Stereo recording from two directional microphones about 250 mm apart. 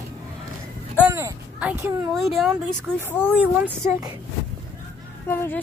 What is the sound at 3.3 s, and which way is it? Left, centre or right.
Speech, centre.